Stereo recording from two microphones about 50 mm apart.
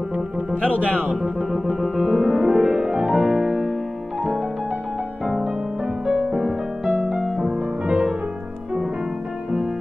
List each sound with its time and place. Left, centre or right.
1.0 s music: centre
3.2 s music: centre
6.0 s music: centre
6.9 s music: centre
7.4 s music: right